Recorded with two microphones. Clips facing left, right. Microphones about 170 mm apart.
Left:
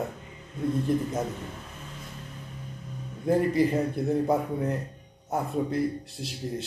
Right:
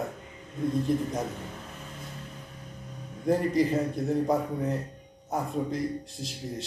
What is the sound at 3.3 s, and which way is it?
A man's voice, centre (ahead or behind).